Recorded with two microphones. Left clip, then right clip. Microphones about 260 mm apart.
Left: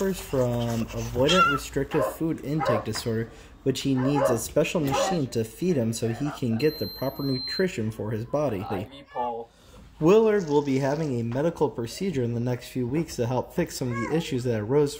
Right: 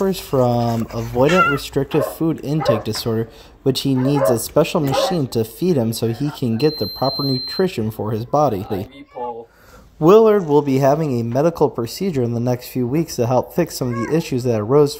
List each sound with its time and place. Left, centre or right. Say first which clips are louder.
0.0 s speech: right 8 dB; right
10.0 s speech: right 8 dB; right